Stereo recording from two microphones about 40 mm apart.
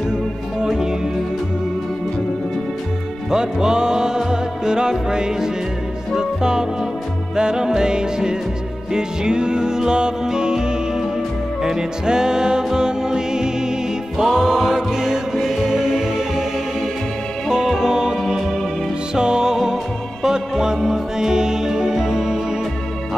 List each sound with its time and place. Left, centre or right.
0.6 s music: centre
3.3 s music: centre
11.6 s music: centre
14.2 s music: centre
17.5 s music: centre